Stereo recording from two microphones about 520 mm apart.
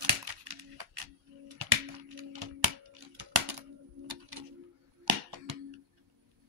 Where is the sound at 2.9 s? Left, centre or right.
Right.